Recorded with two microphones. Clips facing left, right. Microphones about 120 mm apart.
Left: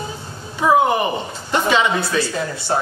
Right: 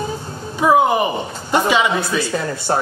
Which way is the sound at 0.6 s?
15° right (ahead or behind).